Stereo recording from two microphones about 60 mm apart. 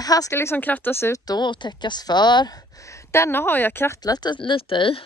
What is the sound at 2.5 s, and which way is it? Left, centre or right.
A woman's voice, left.